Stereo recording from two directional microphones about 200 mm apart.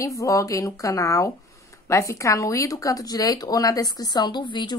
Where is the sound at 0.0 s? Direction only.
15° left (ahead or behind).